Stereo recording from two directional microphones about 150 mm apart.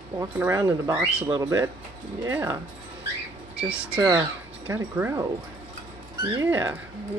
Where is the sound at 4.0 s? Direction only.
25° right (ahead or behind).